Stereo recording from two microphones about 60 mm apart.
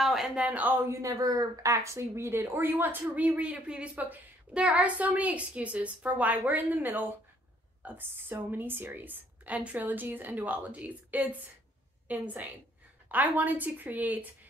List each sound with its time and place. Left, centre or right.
0.0 s a sound: centre
0.4 s a woman's voice: right
1.0 s a woman's voice: right